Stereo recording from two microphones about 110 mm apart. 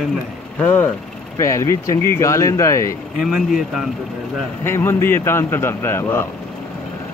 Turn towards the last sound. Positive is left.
turn(degrees=20)  # may be behind; listen again after turning